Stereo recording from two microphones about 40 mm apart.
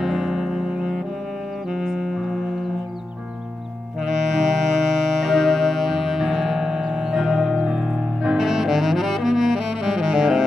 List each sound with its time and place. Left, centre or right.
0.0 s music: centre
4.0 s saxophone: centre
6.4 s music: centre
7.6 s saxophone: centre